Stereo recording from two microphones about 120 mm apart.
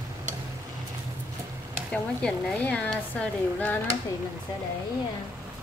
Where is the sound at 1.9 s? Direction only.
10° left (ahead or behind).